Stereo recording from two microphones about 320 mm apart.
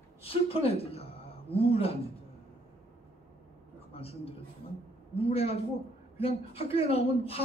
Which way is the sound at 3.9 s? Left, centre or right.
Centre.